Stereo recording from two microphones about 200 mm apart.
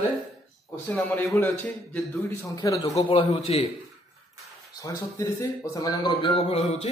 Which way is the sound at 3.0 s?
30° left (ahead or behind).